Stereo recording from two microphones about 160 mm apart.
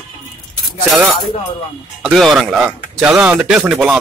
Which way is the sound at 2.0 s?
Centre (ahead or behind).